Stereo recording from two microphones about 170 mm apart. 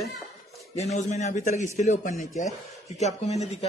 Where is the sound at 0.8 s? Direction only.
40° left (ahead or behind).